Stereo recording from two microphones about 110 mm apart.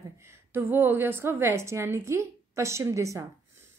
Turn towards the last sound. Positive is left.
turn(degrees=-30)  # may be behind; listen again after turning